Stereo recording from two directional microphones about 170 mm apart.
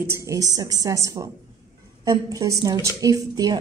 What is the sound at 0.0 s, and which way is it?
A woman's voice, 15° right (ahead or behind).